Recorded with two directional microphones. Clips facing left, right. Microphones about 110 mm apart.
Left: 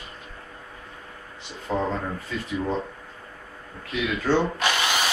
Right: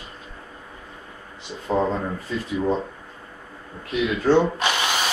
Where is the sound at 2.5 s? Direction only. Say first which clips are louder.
Right 4 dB; 20° right (ahead or behind).